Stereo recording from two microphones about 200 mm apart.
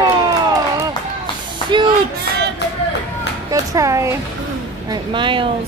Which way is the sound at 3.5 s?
15° right (ahead or behind).